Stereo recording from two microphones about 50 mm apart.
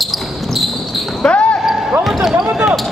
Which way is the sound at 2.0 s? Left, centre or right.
Centre.